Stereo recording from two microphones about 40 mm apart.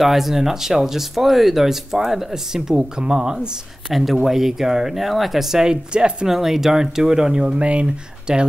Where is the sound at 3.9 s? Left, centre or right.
Centre; by 6.1 s right.